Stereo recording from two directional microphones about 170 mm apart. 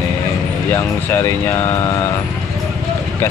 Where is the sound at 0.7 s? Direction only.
10° left (ahead or behind).